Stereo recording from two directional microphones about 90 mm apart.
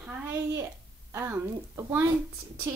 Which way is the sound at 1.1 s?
30° right (ahead or behind).